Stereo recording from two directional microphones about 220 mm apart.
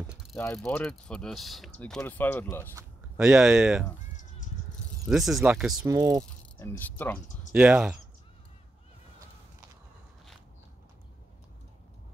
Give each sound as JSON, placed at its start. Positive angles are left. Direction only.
{"t": 0.4, "sound": "speech", "side_deg": 10}
{"t": 3.2, "sound": "speech", "side_deg": 0}
{"t": 5.0, "sound": "speech", "side_deg": 0}
{"t": 5.8, "sound": "speech", "side_deg": -15}
{"t": 6.6, "sound": "speech", "side_deg": 10}
{"t": 7.5, "sound": "speech", "side_deg": -5}